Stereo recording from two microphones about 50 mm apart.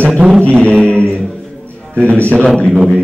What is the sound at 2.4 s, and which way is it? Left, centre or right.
Speech, centre.